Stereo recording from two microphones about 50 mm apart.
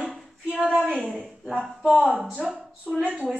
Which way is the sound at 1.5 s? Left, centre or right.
Centre.